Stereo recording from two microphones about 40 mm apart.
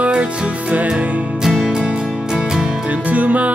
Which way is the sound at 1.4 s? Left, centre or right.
Centre.